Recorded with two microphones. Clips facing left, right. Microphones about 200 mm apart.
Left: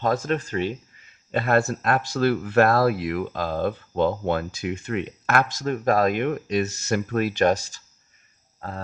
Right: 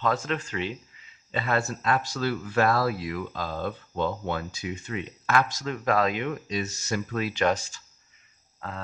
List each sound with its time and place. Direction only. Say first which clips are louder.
0.0 s speech: left 4 dB; 40° left (ahead or behind)
8.5 s cricket: left 3 dB; 40° left (ahead or behind)